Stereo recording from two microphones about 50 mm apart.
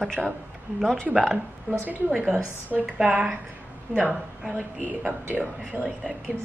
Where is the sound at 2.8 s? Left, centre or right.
Centre.